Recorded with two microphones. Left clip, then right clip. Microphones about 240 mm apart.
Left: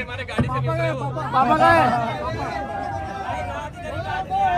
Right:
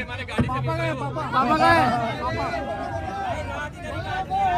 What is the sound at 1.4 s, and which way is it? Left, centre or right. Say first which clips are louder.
Speech: left 3 dB; centre.